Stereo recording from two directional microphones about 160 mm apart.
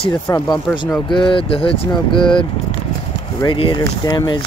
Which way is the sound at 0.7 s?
30° left (ahead or behind).